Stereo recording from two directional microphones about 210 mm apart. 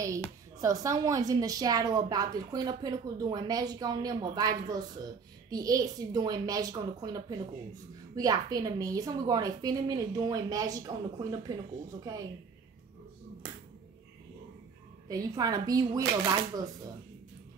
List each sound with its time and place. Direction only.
0.6 s a woman's voice: 15° right (ahead or behind)
15.0 s a woman's voice: 15° right (ahead or behind)